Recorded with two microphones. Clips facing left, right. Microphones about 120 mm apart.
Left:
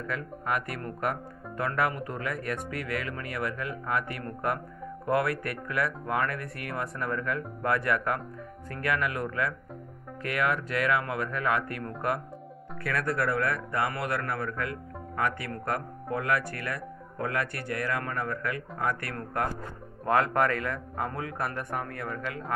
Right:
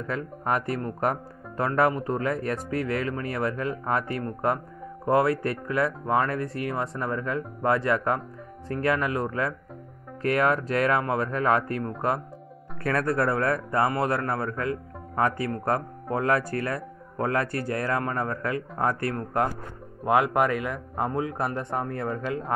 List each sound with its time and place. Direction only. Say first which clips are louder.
0.0 s a man's voice: right 4 dB; 30° right (ahead or behind)